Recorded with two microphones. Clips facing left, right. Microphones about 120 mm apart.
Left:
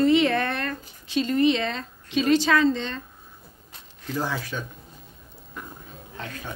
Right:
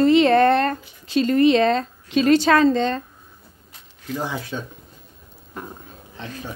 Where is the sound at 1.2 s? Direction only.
55° right (ahead or behind).